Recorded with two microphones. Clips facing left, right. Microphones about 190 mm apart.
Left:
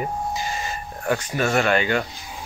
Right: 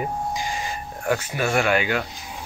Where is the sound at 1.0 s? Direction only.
10° right (ahead or behind).